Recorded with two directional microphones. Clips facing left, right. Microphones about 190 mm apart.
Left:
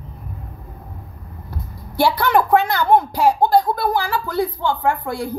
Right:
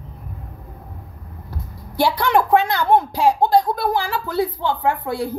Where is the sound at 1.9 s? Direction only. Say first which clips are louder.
Left 1 dB; 5° left (ahead or behind).